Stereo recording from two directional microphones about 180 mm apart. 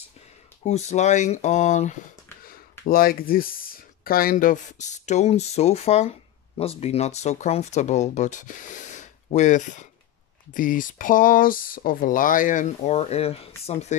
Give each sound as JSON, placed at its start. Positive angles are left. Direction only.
{"t": 0.7, "sound": "speech", "side_deg": 40}
{"t": 2.8, "sound": "speech", "side_deg": 55}